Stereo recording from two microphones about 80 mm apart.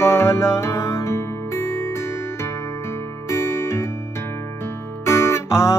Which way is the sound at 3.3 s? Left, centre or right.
Left.